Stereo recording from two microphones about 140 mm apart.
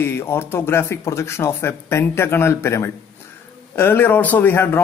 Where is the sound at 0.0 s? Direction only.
15° left (ahead or behind).